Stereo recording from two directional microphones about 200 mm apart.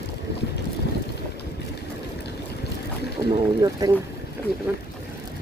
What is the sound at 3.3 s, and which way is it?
Speech, 20° right (ahead or behind).